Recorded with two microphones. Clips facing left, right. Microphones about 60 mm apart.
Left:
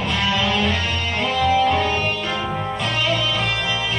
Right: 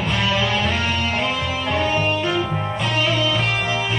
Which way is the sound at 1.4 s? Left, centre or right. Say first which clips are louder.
Left 5 dB; centre.